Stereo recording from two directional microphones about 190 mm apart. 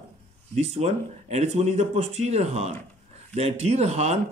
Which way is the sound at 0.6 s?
35° right (ahead or behind).